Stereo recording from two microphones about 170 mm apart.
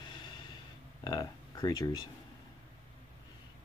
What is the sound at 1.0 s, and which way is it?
Speech, 20° left (ahead or behind).